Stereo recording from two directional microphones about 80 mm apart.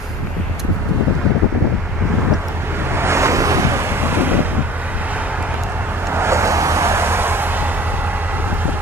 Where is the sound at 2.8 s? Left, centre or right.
Right.